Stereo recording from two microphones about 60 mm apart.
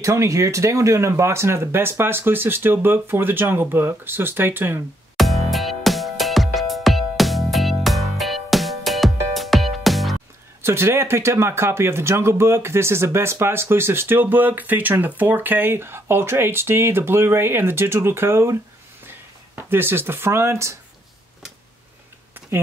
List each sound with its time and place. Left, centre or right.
0.0 s speech: right
5.1 s music: centre
10.6 s speech: right